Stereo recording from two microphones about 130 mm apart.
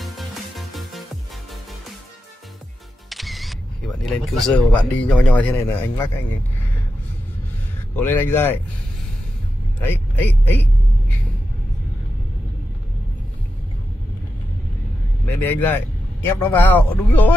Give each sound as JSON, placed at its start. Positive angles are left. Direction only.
{"t": 0.0, "sound": "music", "side_deg": 0}
{"t": 3.1, "sound": "speech", "side_deg": 0}
{"t": 7.9, "sound": "speech", "side_deg": 15}
{"t": 9.8, "sound": "a man's voice", "side_deg": 15}
{"t": 15.2, "sound": "speech", "side_deg": 15}